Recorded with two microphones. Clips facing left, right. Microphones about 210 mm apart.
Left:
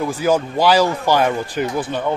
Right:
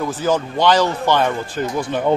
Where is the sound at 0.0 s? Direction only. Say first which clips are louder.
Left 2 dB; 10° left (ahead or behind).